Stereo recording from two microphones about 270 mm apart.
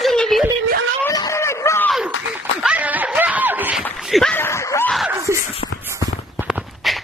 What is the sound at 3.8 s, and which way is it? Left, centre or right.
Speech, centre.